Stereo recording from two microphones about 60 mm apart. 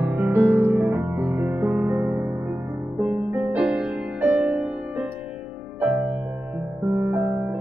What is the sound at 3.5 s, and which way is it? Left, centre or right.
Music, centre.